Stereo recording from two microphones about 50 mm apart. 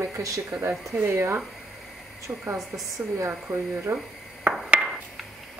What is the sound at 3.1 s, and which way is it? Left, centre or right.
Speech, right.